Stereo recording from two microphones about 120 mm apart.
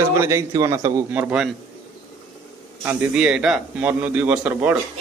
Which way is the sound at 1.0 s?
15° right (ahead or behind).